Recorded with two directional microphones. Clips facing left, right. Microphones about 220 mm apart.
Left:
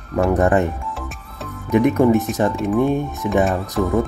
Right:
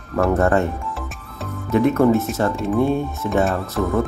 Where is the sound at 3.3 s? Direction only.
15° left (ahead or behind).